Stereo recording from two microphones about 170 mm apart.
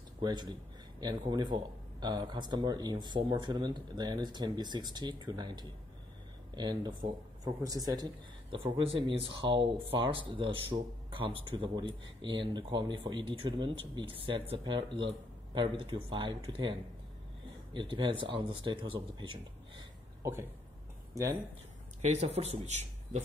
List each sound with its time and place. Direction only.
0.2 s speech: 25° right (ahead or behind)
17.7 s speech: 30° right (ahead or behind)
22.0 s speech: 40° right (ahead or behind)